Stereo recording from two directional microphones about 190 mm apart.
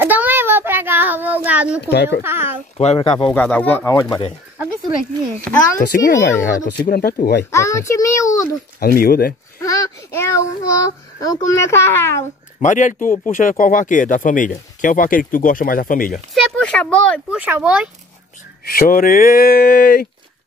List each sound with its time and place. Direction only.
0.0 s child singing: 10° right (ahead or behind)
1.8 s a child's voice: 60° left (ahead or behind)
2.2 s speech: 10° right (ahead or behind)
2.8 s speech: 30° left (ahead or behind)
3.3 s child singing: 5° left (ahead or behind)
5.5 s speech: 5° left (ahead or behind)
5.8 s speech: 45° left (ahead or behind)
7.5 s child singing: 15° left (ahead or behind)
8.7 s speech: 50° left (ahead or behind)
9.6 s child singing: 15° left (ahead or behind)
12.5 s speech: 40° left (ahead or behind)
16.3 s speech: 5° left (ahead or behind)
17.3 s speech: 10° right (ahead or behind)
18.7 s speech: 50° left (ahead or behind)